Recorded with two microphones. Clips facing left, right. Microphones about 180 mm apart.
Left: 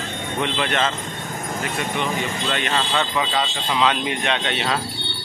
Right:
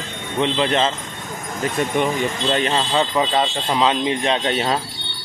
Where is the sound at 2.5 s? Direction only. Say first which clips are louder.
Right 4 dB; 30° right (ahead or behind).